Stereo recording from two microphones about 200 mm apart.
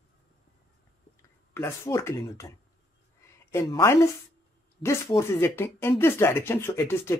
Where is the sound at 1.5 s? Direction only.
15° left (ahead or behind).